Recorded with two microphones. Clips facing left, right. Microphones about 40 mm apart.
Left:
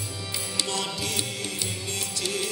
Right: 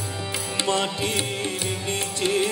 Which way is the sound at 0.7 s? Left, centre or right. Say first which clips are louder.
Right 9 dB; right.